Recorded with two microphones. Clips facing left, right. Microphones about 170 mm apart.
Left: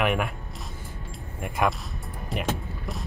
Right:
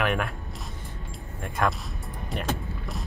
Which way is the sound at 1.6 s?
10° left (ahead or behind).